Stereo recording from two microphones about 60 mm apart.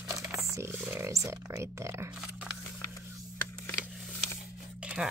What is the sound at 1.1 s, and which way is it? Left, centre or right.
Speech, right.